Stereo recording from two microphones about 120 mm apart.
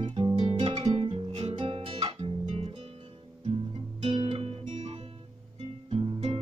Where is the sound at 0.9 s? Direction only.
55° right (ahead or behind).